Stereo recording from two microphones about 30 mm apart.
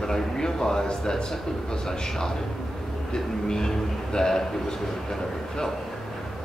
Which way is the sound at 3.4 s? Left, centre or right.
Left.